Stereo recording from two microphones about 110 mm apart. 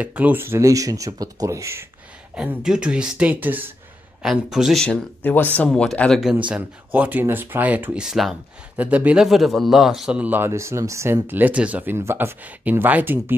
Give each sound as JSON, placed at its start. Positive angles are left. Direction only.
{"t": 0.0, "sound": "speech", "side_deg": -15}
{"t": 2.3, "sound": "speech", "side_deg": -5}
{"t": 4.2, "sound": "speech", "side_deg": -5}
{"t": 4.8, "sound": "speech", "side_deg": 15}
{"t": 6.4, "sound": "speech", "side_deg": -15}
{"t": 9.2, "sound": "speech", "side_deg": 0}